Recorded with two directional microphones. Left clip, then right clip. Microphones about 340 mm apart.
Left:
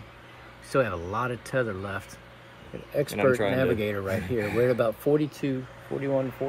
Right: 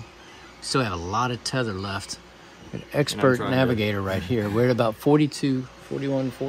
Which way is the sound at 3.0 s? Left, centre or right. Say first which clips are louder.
Right 2 dB; right.